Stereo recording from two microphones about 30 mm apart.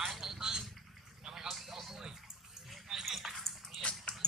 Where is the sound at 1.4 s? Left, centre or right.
Centre.